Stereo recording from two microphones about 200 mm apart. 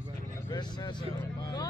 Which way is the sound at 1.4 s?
20° left (ahead or behind).